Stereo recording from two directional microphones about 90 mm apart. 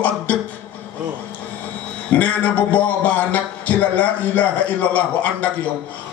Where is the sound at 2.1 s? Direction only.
15° left (ahead or behind).